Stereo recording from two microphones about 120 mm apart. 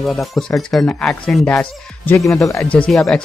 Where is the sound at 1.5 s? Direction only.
15° left (ahead or behind).